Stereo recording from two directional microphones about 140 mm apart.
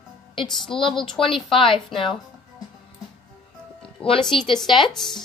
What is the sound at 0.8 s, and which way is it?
Speech, 5° left (ahead or behind).